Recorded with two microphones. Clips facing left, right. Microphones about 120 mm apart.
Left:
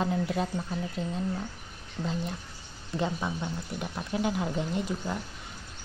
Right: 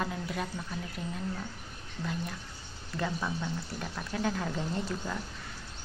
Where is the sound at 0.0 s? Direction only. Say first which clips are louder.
Left 6 dB; 25° left (ahead or behind).